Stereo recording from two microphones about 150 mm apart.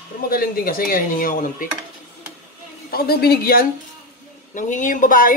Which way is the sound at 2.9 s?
90° left.